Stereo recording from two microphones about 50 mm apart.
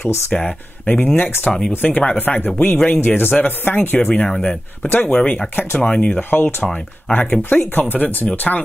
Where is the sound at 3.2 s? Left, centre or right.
Left.